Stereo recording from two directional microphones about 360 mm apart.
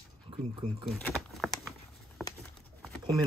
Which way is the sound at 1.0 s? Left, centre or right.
Centre.